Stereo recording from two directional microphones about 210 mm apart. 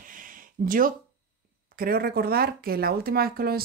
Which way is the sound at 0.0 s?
40° right (ahead or behind).